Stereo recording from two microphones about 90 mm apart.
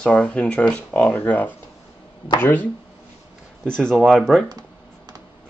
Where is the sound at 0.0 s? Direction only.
15° left (ahead or behind).